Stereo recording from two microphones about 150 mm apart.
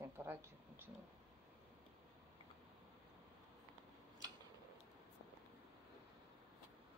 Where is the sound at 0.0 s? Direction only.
20° right (ahead or behind).